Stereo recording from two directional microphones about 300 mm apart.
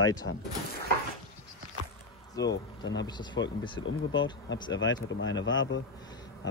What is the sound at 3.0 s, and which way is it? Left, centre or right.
Speech, centre.